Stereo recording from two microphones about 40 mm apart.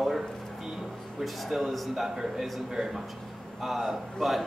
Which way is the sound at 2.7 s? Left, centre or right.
Centre.